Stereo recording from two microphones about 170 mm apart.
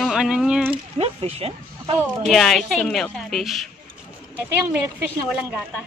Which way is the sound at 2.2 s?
Centre (ahead or behind).